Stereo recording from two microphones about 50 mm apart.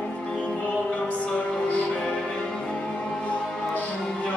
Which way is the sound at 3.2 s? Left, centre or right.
Left.